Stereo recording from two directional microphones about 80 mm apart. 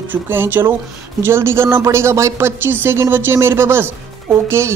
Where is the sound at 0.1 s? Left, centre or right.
Right.